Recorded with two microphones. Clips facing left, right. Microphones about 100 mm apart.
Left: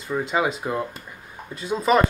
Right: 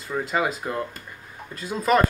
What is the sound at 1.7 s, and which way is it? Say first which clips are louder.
Speech: left 1 dB; centre (ahead or behind).